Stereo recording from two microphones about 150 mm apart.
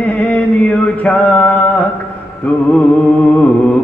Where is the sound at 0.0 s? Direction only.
10° left (ahead or behind).